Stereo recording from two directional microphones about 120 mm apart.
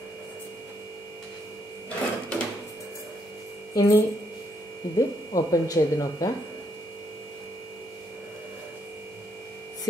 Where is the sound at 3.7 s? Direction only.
30° left (ahead or behind).